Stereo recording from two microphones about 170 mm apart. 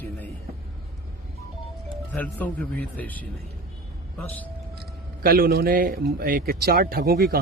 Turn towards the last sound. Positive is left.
turn(degrees=-60)  # may be behind; listen again after turning